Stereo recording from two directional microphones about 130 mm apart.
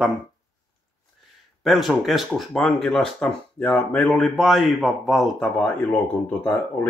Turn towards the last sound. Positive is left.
turn(degrees=10)  # may be behind; listen again after turning